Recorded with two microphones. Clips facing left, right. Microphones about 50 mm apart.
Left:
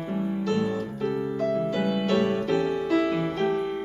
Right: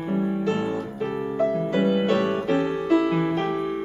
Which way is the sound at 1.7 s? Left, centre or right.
Right.